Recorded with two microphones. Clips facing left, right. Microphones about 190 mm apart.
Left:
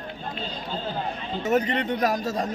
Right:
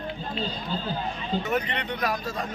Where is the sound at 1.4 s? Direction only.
40° left (ahead or behind).